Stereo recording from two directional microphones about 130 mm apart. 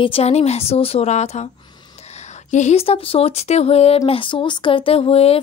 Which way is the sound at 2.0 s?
55° left (ahead or behind).